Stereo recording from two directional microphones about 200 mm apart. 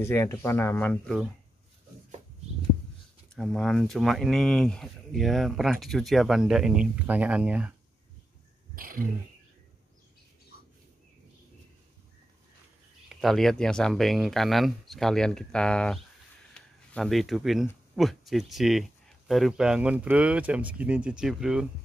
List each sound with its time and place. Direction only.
0.0 s speech: 15° left (ahead or behind)
3.3 s speech: centre (ahead or behind)
8.7 s a sound: 45° right (ahead or behind)
13.1 s speech: centre (ahead or behind)